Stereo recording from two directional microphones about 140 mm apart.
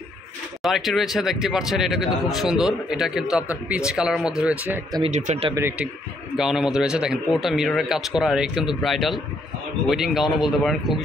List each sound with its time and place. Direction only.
0.6 s speech: centre (ahead or behind)
5.0 s speech: 55° right (ahead or behind)
5.5 s a man's voice: 15° right (ahead or behind)
6.3 s speech: 5° right (ahead or behind)